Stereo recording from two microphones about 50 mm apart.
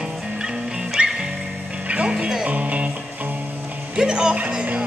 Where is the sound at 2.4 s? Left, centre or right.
Right.